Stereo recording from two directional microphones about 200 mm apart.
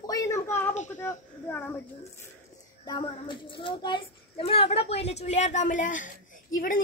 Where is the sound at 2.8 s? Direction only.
20° left (ahead or behind).